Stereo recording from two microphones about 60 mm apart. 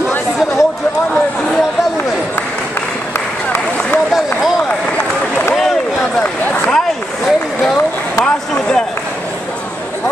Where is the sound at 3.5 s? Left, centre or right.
Left.